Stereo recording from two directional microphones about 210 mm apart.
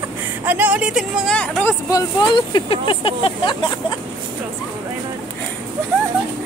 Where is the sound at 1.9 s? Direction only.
20° left (ahead or behind).